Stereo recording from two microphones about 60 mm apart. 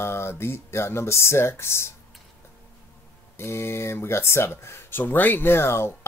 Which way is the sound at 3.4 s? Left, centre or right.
Left.